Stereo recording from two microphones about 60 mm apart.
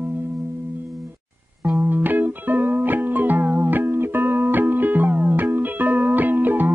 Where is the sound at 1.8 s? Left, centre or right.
Right.